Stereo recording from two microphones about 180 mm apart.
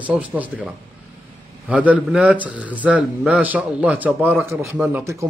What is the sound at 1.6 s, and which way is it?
A man's voice, 5° right (ahead or behind).